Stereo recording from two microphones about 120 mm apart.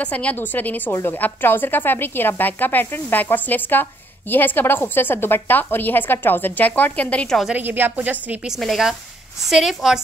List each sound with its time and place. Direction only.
0.0 s a woman's voice: 10° left (ahead or behind)
7.5 s a woman's voice: 15° right (ahead or behind)
8.5 s a woman's voice: centre (ahead or behind)